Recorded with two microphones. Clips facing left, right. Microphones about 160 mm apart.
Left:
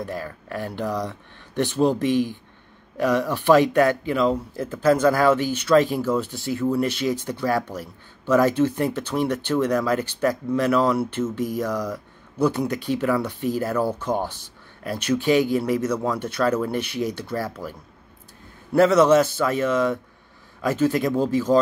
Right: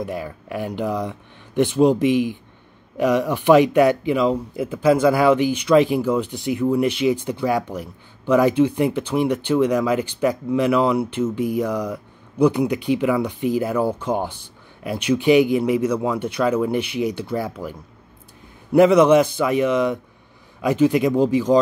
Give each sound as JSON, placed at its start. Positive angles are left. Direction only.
{"t": 0.0, "sound": "speech", "side_deg": -15}